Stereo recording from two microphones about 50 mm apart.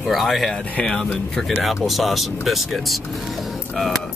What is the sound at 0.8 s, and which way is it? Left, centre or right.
Speech, centre.